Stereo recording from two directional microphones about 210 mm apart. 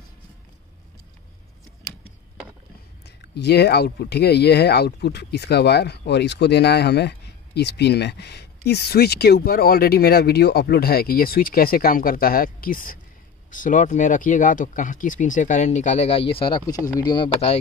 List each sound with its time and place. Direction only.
3.3 s speech: 50° left (ahead or behind); by 17.6 s 25° left (ahead or behind)